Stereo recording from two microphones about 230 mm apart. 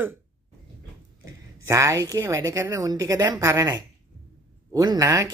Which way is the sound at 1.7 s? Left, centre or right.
Centre.